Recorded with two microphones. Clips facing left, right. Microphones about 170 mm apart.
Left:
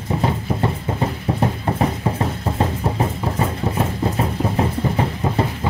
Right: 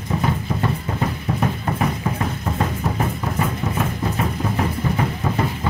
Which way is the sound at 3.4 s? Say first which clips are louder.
Left 2 dB; 30° left (ahead or behind).